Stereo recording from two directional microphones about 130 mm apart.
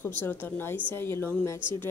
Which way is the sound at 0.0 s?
15° left (ahead or behind).